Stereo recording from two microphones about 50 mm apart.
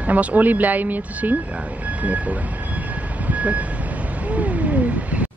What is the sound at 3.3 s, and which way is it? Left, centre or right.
Vehicle, right.